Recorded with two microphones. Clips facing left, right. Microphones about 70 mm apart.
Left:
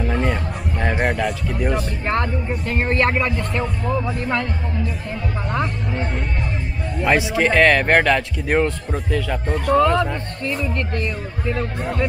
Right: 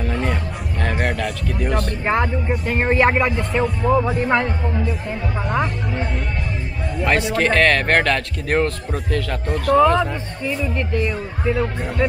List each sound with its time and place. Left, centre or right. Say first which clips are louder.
0.0 s music: left 2 dB; centre
0.7 s speech: left 2 dB; centre
2.0 s speech: right 3 dB; centre
2.8 s speech: right 3 dB; centre
7.0 s speech: left 1 dB; centre